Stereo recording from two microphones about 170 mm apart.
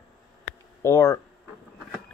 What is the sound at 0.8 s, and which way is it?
Speech, 20° left (ahead or behind).